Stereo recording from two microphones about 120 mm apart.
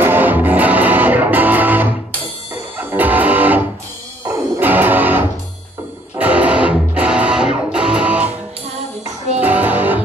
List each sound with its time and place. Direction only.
0.0 s music: 15° right (ahead or behind)
4.2 s music: 25° right (ahead or behind)
4.6 s music: 15° right (ahead or behind)
9.4 s music: 15° right (ahead or behind)